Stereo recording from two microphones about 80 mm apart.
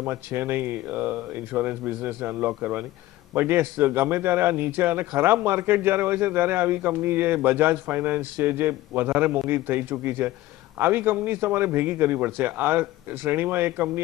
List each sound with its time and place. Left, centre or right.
0.0 s speech: right